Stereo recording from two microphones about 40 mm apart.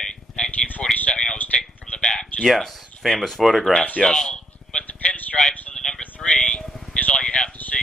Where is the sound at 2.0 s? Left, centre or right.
Centre.